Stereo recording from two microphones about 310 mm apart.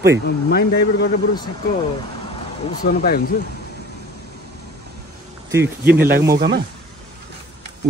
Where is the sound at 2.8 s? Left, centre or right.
Left.